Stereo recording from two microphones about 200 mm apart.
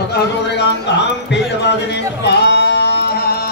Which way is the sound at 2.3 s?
55° left (ahead or behind).